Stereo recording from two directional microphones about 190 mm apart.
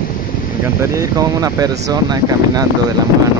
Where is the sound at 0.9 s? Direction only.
15° right (ahead or behind).